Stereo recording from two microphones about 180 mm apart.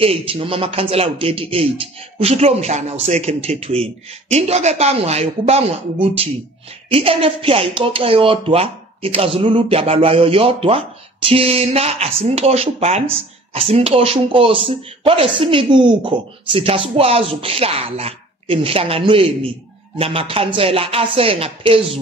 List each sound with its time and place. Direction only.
0.0 s speech: 30° right (ahead or behind)